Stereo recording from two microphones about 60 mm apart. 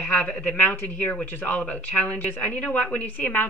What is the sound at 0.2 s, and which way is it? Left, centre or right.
Speech, centre.